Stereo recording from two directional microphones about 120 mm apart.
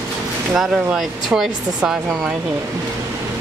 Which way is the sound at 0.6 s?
Centre (ahead or behind).